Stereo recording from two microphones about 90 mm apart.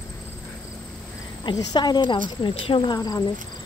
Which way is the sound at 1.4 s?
55° left (ahead or behind).